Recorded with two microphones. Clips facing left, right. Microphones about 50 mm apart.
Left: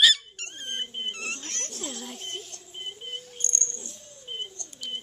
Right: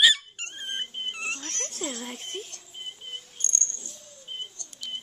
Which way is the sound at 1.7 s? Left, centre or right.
Right.